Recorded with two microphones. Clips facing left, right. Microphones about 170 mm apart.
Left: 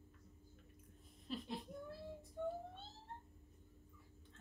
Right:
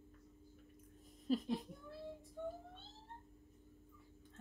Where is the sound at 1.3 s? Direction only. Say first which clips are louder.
Right 10 dB; 40° right (ahead or behind).